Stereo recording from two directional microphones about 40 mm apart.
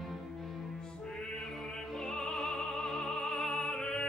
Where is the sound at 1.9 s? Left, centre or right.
Left.